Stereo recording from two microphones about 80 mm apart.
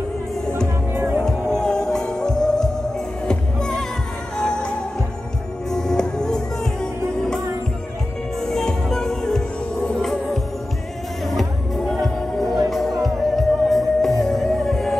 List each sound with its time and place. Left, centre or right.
0.9 s music: right
1.2 s music: centre
8.4 s music: centre